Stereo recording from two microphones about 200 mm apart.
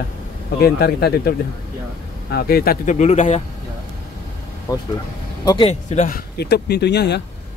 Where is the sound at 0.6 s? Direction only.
55° left (ahead or behind); by 3.4 s 35° left (ahead or behind).